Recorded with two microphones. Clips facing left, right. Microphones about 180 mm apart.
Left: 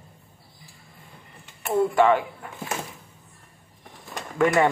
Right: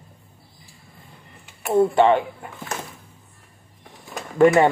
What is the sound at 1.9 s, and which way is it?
Speech, 25° right (ahead or behind).